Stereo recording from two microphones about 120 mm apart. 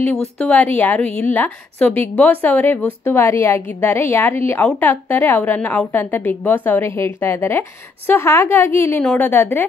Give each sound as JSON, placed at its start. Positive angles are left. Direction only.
{"t": 0.5, "sound": "a woman's voice", "side_deg": 15}